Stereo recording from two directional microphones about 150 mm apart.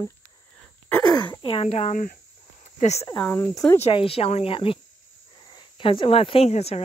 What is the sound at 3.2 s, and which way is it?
Speech, 15° left (ahead or behind).